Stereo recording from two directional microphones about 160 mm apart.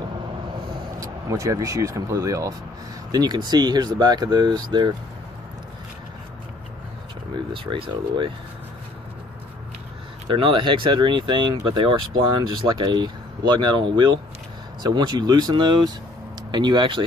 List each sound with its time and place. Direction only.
0.9 s speech: 20° right (ahead or behind)
7.5 s speech: 35° right (ahead or behind)
10.3 s speech: 30° right (ahead or behind)